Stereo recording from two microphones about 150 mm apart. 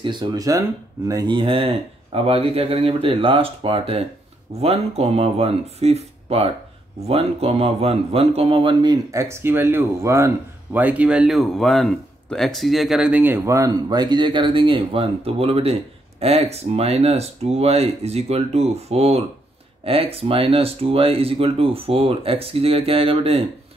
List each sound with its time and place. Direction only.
0.0 s speech: 30° right (ahead or behind)
9.1 s a man's voice: 20° right (ahead or behind); by 23.4 s 40° right (ahead or behind)